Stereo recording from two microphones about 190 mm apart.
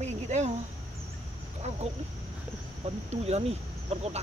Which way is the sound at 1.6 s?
35° right (ahead or behind).